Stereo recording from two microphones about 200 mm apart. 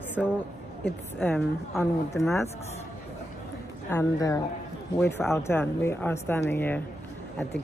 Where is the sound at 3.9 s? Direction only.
15° left (ahead or behind).